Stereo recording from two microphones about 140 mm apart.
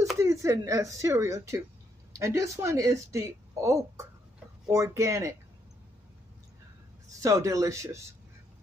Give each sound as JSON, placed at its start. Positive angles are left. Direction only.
{"t": 0.2, "sound": "speech", "side_deg": -20}
{"t": 7.1, "sound": "speech", "side_deg": -25}